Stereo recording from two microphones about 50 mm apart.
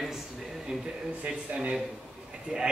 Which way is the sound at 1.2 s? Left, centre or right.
Right.